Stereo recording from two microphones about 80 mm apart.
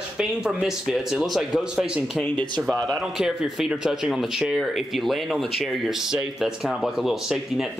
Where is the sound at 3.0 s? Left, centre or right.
Centre.